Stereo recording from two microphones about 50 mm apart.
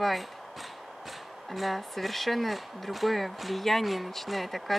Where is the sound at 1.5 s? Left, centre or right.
Centre.